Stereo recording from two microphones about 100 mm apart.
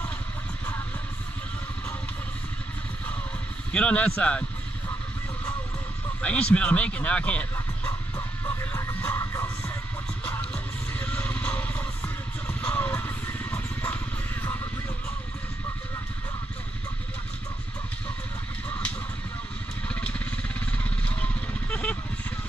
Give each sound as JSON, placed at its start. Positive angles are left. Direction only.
{"t": 3.7, "sound": "speech", "side_deg": 10}
{"t": 6.2, "sound": "speech", "side_deg": 10}
{"t": 8.5, "sound": "music", "side_deg": 30}
{"t": 10.5, "sound": "vehicle", "side_deg": 15}
{"t": 14.4, "sound": "music", "side_deg": 20}
{"t": 19.9, "sound": "vehicle", "side_deg": 15}